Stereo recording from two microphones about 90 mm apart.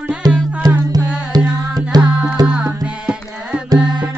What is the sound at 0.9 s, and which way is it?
Music, 45° right (ahead or behind).